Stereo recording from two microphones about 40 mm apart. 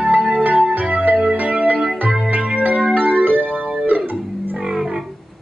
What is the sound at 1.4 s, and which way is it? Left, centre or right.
Music, right.